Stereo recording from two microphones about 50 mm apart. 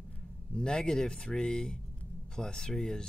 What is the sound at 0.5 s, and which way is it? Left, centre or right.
Speech, centre.